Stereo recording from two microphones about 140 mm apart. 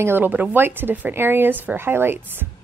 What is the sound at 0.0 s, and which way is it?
Speech, 15° right (ahead or behind).